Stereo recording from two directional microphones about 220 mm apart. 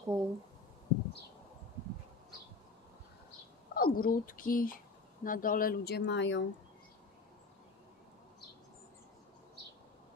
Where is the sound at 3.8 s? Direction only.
40° left (ahead or behind).